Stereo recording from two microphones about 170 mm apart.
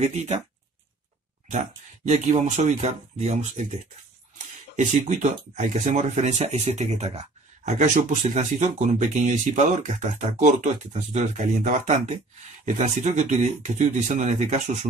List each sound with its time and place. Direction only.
0.0 s speech: 40° right (ahead or behind)
2.0 s speech: 45° right (ahead or behind)